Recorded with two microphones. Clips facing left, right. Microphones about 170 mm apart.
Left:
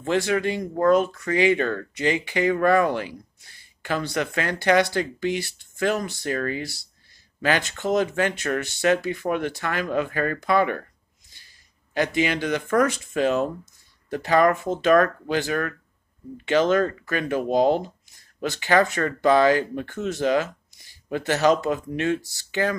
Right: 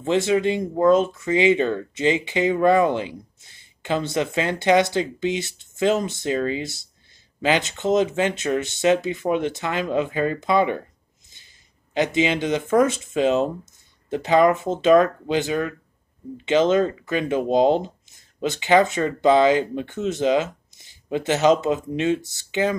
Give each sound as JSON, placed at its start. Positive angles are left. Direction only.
{"t": 0.0, "sound": "speech", "side_deg": -20}